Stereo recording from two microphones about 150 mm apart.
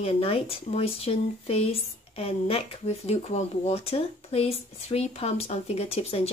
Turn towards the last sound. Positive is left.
turn(degrees=40)  # may be behind; listen again after turning